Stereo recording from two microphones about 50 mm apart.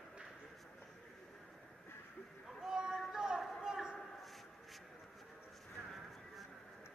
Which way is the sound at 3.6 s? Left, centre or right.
Centre.